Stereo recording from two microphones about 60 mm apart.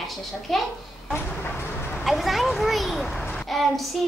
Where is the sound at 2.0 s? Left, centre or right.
Centre.